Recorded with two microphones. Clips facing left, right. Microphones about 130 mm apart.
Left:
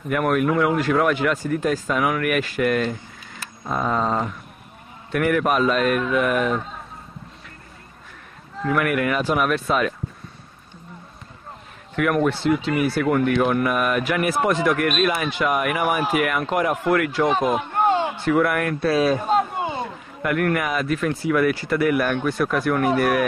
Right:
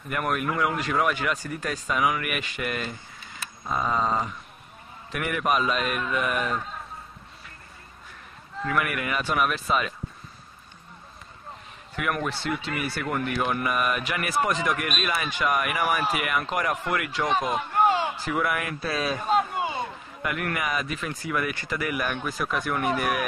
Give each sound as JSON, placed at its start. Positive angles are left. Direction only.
{"t": 0.1, "sound": "speech", "side_deg": 0}
{"t": 8.7, "sound": "speech", "side_deg": 0}
{"t": 11.9, "sound": "speech", "side_deg": 0}